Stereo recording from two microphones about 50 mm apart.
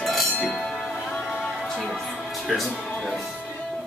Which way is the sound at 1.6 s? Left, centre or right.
Centre.